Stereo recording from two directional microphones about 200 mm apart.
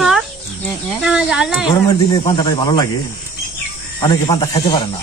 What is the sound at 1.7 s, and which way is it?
Speech, 20° left (ahead or behind).